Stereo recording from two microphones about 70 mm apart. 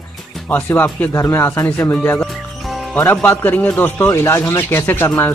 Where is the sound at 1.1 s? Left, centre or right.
Left.